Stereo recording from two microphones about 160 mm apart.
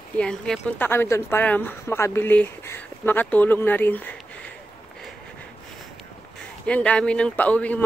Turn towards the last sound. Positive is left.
turn(degrees=10)  # may be behind; listen again after turning